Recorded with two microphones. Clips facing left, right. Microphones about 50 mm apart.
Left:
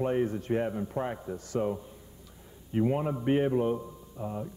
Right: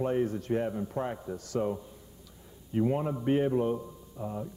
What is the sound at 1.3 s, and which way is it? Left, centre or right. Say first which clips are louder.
Speech: even; left.